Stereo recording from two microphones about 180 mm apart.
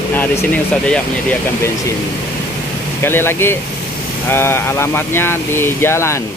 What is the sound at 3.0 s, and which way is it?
Speech, 15° left (ahead or behind).